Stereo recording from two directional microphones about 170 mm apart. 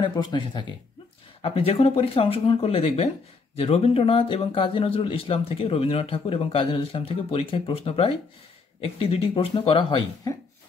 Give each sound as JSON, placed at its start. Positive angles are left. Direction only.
{"t": 0.0, "sound": "speech", "side_deg": 25}